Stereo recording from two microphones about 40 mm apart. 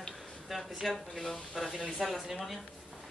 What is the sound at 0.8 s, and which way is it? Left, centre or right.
Speech, centre.